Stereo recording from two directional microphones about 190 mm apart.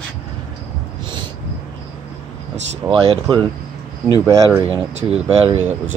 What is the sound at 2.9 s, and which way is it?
Speech, 30° right (ahead or behind).